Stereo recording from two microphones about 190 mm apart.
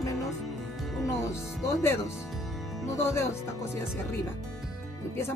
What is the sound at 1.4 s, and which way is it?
Speech, 5° right (ahead or behind).